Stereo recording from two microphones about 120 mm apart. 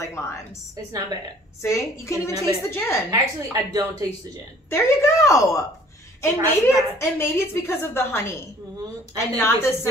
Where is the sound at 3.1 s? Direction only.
30° right (ahead or behind).